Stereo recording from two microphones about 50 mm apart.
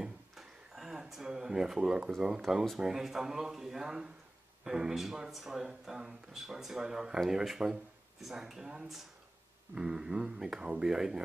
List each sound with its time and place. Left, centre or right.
0.0 s a sound: centre
1.8 s speech: centre
2.5 s speech: centre